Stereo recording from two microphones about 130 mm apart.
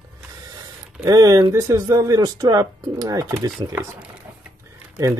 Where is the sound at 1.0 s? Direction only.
30° right (ahead or behind).